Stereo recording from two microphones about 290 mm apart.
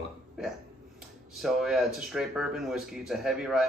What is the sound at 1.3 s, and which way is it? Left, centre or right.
Speech, centre.